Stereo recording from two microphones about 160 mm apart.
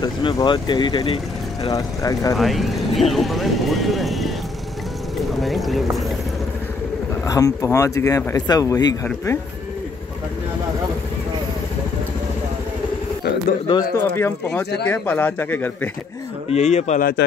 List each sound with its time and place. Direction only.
0.0 s speech: 30° left (ahead or behind)
1.7 s speech: 20° left (ahead or behind)
2.3 s speech: centre (ahead or behind)
7.2 s speech: 20° left (ahead or behind)
13.9 s speech: 15° left (ahead or behind)
16.4 s speech: 45° left (ahead or behind)